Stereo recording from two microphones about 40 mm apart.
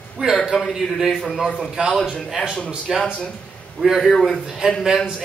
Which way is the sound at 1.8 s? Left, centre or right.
Right.